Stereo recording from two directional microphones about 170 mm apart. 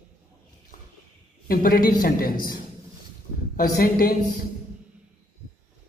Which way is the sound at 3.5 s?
60° left (ahead or behind).